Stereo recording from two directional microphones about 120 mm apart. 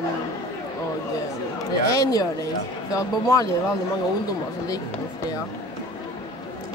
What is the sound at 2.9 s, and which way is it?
Speech, 30° left (ahead or behind).